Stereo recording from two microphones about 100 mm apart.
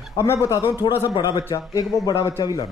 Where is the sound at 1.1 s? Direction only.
45° left (ahead or behind).